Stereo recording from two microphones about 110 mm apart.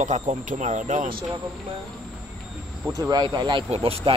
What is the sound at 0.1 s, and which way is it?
Speech, 90° right.